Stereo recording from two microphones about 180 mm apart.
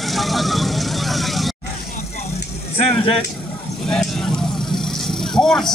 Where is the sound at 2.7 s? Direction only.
30° left (ahead or behind).